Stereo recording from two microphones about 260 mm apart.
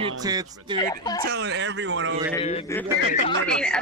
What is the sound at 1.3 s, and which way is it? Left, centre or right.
Speech, right.